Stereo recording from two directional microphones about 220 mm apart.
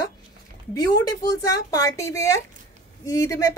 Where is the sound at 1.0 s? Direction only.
15° left (ahead or behind).